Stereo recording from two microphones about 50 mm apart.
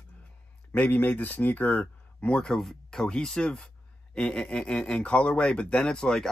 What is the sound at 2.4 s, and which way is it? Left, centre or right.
Speech, centre.